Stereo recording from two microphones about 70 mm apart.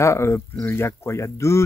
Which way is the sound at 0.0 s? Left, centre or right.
Left.